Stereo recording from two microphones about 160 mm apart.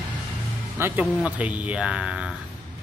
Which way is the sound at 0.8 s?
10° right (ahead or behind).